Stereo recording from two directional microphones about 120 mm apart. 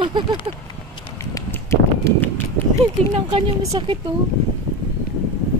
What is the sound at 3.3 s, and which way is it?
Speech, 45° right (ahead or behind).